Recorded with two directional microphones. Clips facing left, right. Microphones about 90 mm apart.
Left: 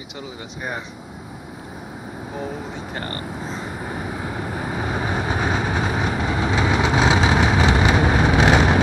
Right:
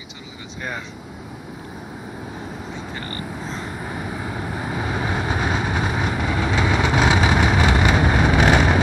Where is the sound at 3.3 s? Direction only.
5° left (ahead or behind).